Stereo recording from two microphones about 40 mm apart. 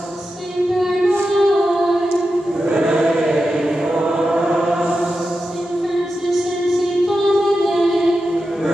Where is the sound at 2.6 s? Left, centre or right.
Right.